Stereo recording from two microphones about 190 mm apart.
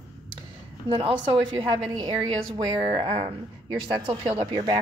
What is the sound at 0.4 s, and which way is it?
A woman's voice, 25° right (ahead or behind).